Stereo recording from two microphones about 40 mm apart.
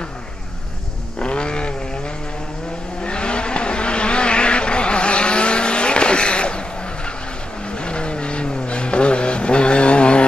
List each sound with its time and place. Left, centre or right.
1.2 s vehicle: left
3.0 s vehicle: left
7.7 s vehicle: left